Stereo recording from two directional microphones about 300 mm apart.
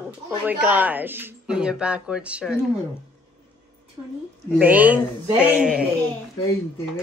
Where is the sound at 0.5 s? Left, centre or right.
Centre.